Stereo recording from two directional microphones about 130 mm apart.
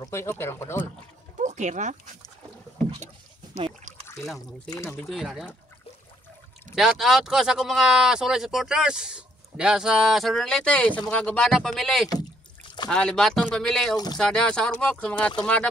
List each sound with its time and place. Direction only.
0.0 s a sound: 20° left (ahead or behind)
1.4 s speech: 65° right (ahead or behind)
4.6 s speech: 25° left (ahead or behind)
5.0 s speech: centre (ahead or behind)
6.7 s speech: 5° right (ahead or behind)